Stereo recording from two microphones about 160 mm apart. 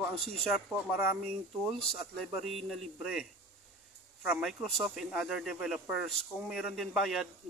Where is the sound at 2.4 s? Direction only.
Centre (ahead or behind).